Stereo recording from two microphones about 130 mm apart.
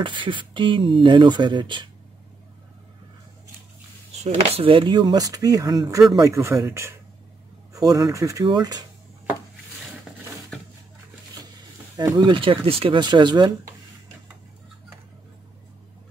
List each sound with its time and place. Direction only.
0.0 s speech: 40° right (ahead or behind)
4.2 s speech: 45° right (ahead or behind)
12.0 s speech: 35° right (ahead or behind)